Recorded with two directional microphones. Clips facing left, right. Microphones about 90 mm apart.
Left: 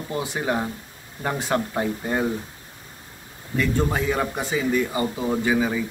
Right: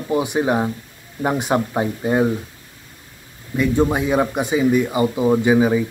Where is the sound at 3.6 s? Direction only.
20° right (ahead or behind).